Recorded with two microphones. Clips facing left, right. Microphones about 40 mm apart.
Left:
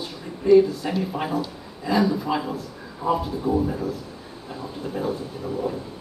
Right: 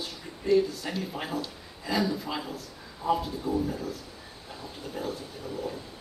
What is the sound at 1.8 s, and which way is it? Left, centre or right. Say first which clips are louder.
Speech: left 7 dB; centre.